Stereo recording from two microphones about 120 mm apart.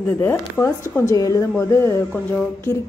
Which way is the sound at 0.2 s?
15° left (ahead or behind).